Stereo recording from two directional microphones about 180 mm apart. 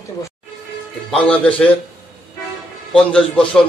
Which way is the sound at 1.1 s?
5° left (ahead or behind).